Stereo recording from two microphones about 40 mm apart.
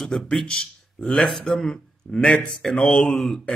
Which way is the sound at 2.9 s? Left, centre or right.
Left.